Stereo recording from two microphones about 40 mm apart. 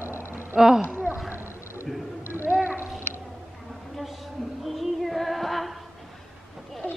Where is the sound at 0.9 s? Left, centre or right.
Right.